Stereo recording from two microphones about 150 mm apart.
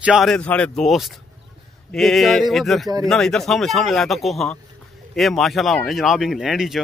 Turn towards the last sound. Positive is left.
turn(degrees=0)  # may be behind; listen again after turning